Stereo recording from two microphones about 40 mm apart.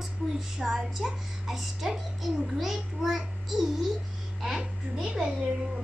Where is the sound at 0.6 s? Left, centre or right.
Centre.